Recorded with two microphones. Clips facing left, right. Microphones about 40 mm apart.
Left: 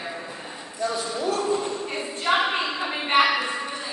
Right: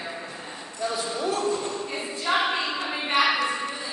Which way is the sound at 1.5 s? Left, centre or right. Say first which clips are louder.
Left 3 dB; centre.